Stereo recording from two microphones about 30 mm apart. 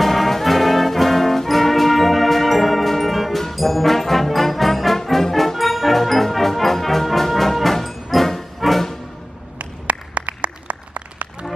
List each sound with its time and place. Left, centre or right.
0.0 s brass instrument: centre
9.6 s applause: right